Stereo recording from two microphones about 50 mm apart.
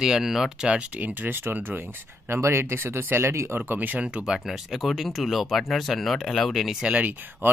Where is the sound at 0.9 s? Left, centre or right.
Right.